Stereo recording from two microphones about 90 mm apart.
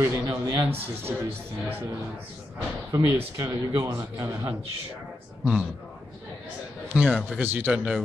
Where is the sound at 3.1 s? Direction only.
35° right (ahead or behind).